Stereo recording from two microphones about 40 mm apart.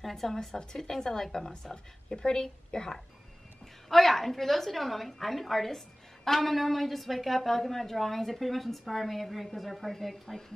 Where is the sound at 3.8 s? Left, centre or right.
Centre.